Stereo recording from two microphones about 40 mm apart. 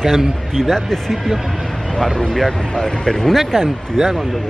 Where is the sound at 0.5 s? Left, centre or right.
Centre.